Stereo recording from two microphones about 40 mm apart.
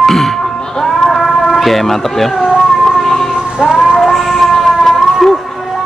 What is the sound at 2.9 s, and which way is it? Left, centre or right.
Music, centre.